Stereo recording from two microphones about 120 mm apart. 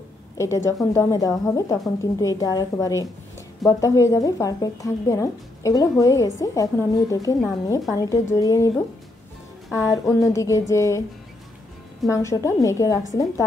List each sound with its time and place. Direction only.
0.4 s a woman's voice: 25° left (ahead or behind)
10.0 s a woman's voice: 25° left (ahead or behind)
12.1 s a woman's voice: 25° left (ahead or behind)